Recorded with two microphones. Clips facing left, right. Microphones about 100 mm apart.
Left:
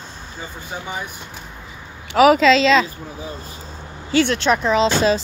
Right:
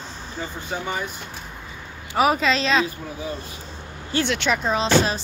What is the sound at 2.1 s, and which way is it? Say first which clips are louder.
Speech: left 7 dB; 90° left.